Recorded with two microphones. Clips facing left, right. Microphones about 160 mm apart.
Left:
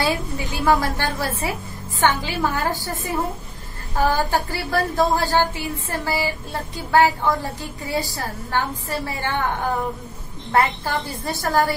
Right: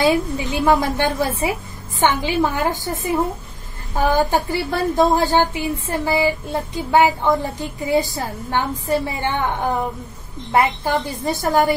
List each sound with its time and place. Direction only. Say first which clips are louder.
0.0 s a woman's voice: right 6 dB; 20° right (ahead or behind)
4.0 s a woman's voice: right 3 dB; 20° right (ahead or behind)